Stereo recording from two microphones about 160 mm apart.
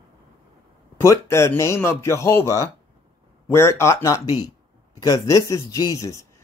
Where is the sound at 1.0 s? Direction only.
15° left (ahead or behind).